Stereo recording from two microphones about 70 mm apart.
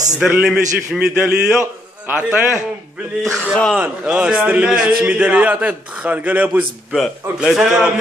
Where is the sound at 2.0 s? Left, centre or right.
Right.